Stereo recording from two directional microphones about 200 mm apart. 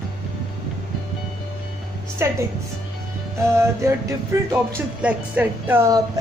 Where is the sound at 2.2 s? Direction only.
15° right (ahead or behind).